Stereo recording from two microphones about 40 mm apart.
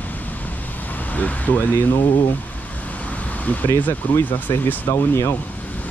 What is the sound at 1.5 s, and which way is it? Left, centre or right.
Speech, left.